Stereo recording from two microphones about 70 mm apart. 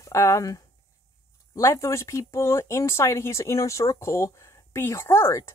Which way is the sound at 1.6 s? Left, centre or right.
Left.